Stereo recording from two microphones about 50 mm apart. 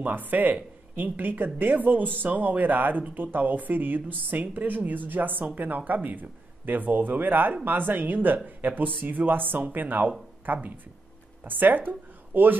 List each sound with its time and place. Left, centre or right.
0.0 s speech: right